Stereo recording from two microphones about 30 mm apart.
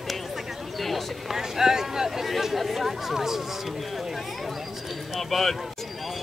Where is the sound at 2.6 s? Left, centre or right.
Centre.